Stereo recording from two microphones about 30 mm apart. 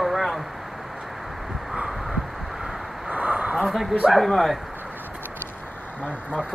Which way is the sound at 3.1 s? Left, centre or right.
Right.